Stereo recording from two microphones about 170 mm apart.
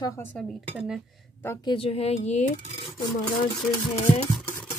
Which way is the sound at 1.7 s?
35° left (ahead or behind).